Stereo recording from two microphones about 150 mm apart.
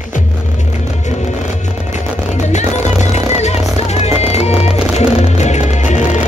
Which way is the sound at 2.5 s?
50° left (ahead or behind).